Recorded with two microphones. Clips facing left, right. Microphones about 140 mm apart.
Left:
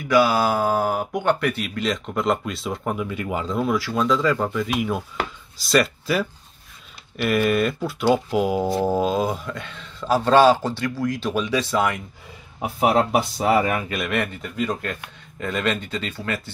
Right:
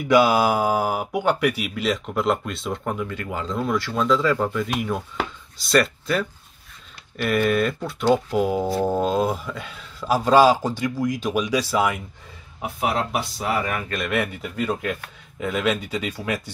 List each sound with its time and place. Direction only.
0.1 s speech: 20° right (ahead or behind)
12.8 s speech: 40° left (ahead or behind)
13.8 s speech: 5° left (ahead or behind)